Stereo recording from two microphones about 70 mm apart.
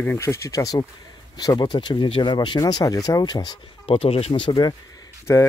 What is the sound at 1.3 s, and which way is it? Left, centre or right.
Speech, left.